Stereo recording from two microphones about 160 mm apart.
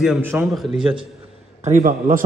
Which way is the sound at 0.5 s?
Centre (ahead or behind).